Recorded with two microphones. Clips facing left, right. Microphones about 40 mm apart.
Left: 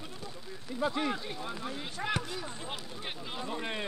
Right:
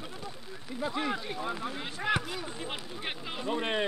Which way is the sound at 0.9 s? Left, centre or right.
Centre.